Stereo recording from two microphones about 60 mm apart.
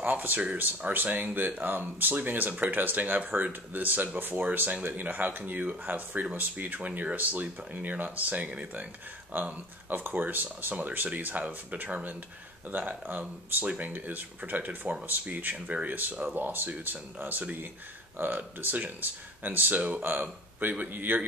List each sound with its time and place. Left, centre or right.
0.0 s speech: right